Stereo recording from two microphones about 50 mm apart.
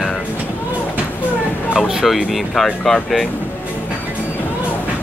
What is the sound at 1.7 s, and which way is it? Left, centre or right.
Speech, centre.